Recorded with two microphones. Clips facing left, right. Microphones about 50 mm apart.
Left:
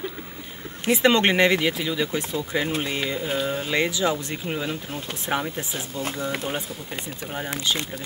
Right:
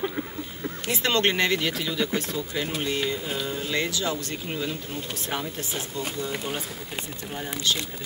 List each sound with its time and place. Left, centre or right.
0.8 s speech: left
6.1 s speech: left